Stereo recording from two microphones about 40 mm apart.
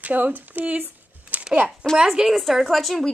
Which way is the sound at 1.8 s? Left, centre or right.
Right.